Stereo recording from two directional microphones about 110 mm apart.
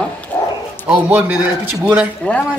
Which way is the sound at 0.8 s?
10° right (ahead or behind).